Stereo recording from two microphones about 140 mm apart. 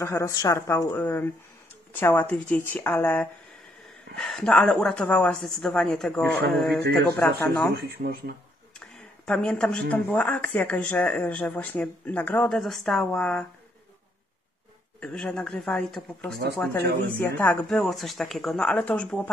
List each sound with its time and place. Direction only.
0.0 s speech: 20° left (ahead or behind); by 7.0 s 5° left (ahead or behind)
7.9 s speech: 90° right
8.7 s speech: 5° left (ahead or behind)
15.0 s speech: 5° left (ahead or behind)